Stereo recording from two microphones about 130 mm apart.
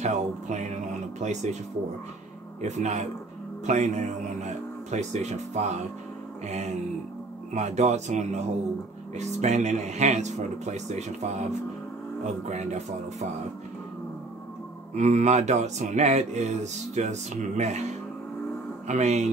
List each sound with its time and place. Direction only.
0.0 s music: 65° right (ahead or behind)
1.2 s speech: 60° right (ahead or behind)
2.6 s speech: 60° right (ahead or behind)
12.4 s speech: 60° right (ahead or behind)
15.0 s speech: 65° right (ahead or behind)
18.9 s speech: 60° right (ahead or behind)